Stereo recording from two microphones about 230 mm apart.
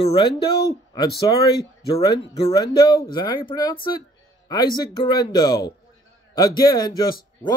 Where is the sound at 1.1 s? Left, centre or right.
Left.